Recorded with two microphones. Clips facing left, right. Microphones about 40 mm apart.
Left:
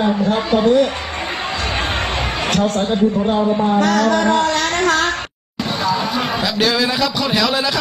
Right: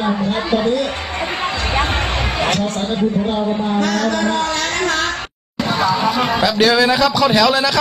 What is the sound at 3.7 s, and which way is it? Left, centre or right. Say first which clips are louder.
Music: left 3 dB; left.